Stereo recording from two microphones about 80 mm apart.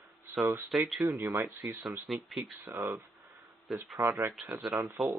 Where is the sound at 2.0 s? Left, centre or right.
Centre.